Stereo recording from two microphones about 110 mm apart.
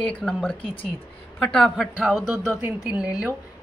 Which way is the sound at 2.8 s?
10° right (ahead or behind).